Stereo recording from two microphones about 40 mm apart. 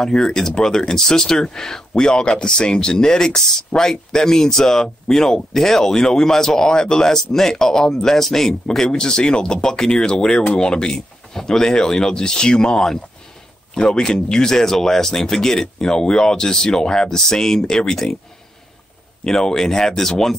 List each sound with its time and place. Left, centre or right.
0.0 s speech: centre
19.2 s speech: centre